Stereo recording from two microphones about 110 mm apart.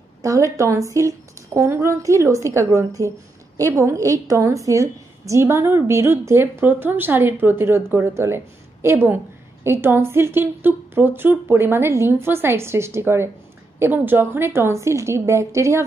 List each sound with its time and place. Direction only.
0.2 s a woman's voice: 30° right (ahead or behind)